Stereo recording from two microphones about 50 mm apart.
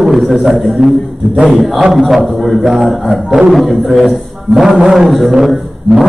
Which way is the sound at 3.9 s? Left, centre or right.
Centre.